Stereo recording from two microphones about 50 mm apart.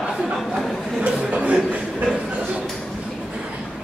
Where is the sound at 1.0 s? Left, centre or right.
Right.